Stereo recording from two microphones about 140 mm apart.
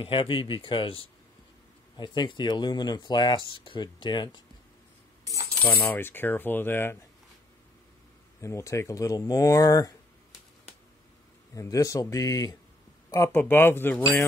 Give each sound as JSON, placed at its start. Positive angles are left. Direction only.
{"t": 0.0, "sound": "speech", "side_deg": 35}
{"t": 5.2, "sound": "coin", "side_deg": -25}
{"t": 5.6, "sound": "coin", "side_deg": 15}
{"t": 8.4, "sound": "speech", "side_deg": 20}
{"t": 11.5, "sound": "speech", "side_deg": 25}
{"t": 13.1, "sound": "coin", "side_deg": 20}